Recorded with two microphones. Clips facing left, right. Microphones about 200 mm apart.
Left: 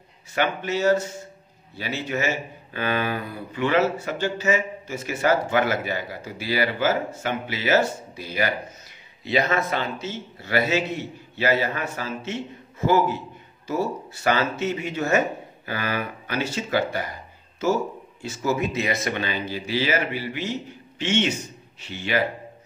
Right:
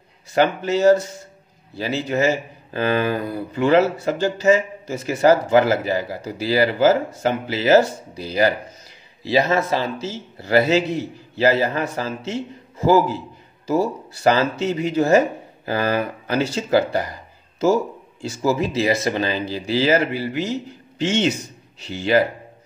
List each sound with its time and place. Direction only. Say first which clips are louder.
0.3 s speech: right 6 dB; 40° right (ahead or behind)
14.2 s speech: right 5 dB; 35° right (ahead or behind)